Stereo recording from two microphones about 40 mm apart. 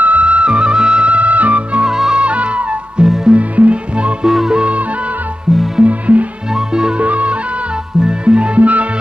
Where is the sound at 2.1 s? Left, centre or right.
Right.